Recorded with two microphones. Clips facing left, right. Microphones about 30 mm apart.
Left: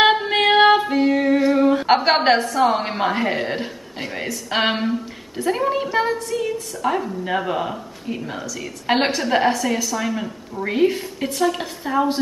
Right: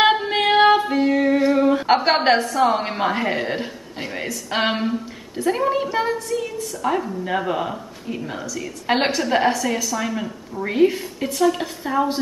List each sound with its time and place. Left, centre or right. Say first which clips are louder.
0.0 s female singing: left 1 dB; centre